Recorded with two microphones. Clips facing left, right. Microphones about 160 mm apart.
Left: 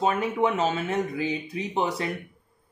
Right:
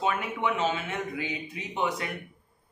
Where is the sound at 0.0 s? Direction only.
40° left (ahead or behind).